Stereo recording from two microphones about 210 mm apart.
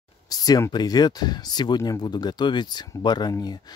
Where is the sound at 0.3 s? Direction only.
20° left (ahead or behind).